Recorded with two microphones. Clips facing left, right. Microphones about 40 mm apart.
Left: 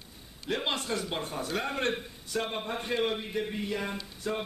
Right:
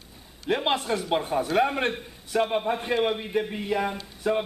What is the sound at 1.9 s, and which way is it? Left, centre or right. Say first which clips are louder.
Speech: right 2 dB; centre.